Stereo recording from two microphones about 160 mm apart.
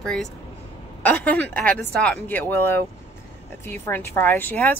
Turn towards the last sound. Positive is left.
turn(degrees=10)  # may be behind; listen again after turning